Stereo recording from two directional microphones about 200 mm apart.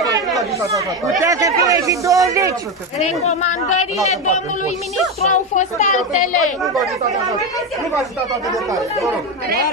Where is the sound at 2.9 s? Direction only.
35° left (ahead or behind).